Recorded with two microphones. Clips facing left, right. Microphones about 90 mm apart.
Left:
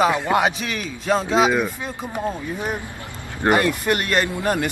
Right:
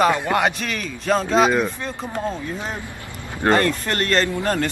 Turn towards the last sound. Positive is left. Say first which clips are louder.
# even
turn(degrees=15)  # may be behind; listen again after turning